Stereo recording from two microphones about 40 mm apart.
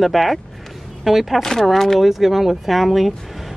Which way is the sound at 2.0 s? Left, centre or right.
Centre.